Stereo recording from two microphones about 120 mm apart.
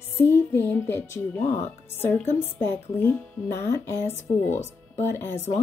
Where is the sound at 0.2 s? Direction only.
20° left (ahead or behind).